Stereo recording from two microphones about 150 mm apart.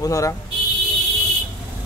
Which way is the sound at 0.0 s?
20° left (ahead or behind).